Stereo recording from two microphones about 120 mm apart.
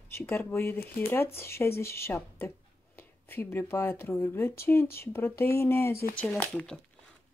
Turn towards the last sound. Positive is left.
turn(degrees=10)  # may be behind; listen again after turning